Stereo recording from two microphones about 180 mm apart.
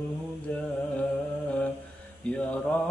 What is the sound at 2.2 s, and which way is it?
Mantra, 5° left (ahead or behind).